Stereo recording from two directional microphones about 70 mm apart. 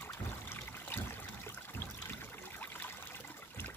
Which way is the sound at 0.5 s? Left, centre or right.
Left.